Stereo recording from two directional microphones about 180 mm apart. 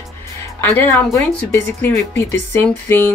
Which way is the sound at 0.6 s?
10° left (ahead or behind).